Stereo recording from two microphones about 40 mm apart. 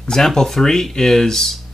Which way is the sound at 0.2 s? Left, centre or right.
Centre.